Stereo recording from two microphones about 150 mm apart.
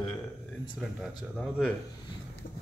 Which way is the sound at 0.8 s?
Centre (ahead or behind).